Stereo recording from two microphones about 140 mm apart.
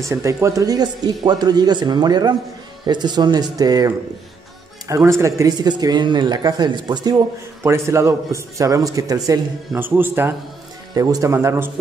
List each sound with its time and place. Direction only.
0.0 s speech: 20° right (ahead or behind)
7.6 s speech: 20° right (ahead or behind)
9.8 s speech: 15° right (ahead or behind)